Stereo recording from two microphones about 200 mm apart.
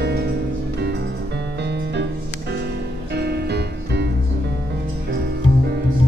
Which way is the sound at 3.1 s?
55° right (ahead or behind).